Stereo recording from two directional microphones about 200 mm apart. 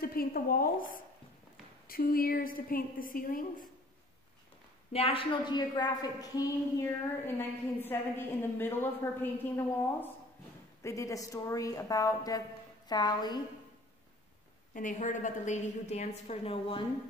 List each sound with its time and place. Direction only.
0.0 s a woman's voice: 45° left (ahead or behind)
4.9 s a woman's voice: 30° left (ahead or behind)
14.7 s a woman's voice: 40° left (ahead or behind)